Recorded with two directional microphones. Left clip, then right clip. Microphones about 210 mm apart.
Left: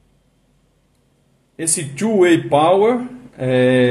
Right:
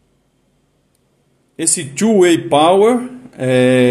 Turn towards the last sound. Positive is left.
turn(degrees=-20)  # may be behind; listen again after turning